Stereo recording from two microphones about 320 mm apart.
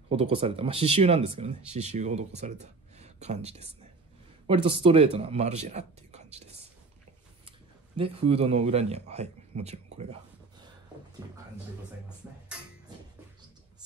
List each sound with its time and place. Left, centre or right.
0.1 s speech: centre
8.0 s speech: centre
11.2 s speech: centre